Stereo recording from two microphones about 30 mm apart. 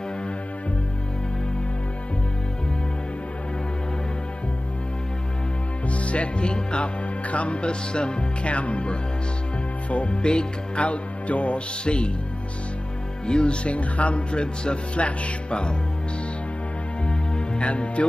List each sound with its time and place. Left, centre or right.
5.9 s music: left
7.2 s speech: left
9.8 s music: left
10.1 s speech: left
10.8 s speech: left
11.8 s speech: left
13.3 s speech: left
17.6 s speech: left